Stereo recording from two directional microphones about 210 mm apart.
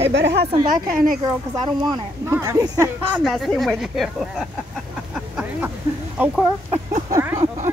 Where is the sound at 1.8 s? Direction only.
15° right (ahead or behind).